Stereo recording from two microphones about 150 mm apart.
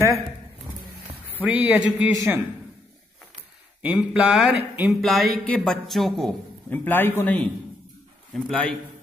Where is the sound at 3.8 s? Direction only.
5° right (ahead or behind).